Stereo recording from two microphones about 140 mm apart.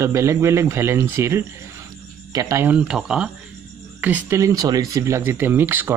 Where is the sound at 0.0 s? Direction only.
20° right (ahead or behind).